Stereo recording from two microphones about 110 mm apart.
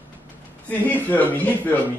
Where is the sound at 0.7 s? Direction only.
15° left (ahead or behind).